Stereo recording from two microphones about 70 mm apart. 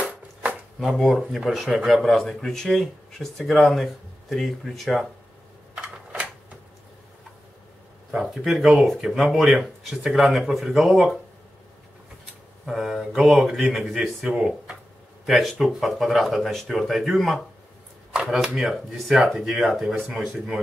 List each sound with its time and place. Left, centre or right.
0.0 s chopping: centre
0.9 s speech: centre
8.1 s speech: centre
12.6 s speech: centre